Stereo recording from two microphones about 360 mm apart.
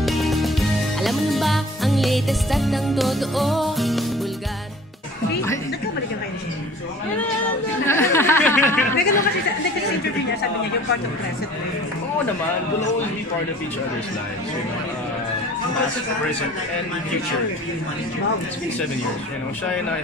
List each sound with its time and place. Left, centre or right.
0.0 s music: centre
7.8 s a sound: centre
8.9 s speech: left